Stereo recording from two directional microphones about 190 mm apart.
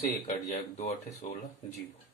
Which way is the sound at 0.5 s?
40° left (ahead or behind).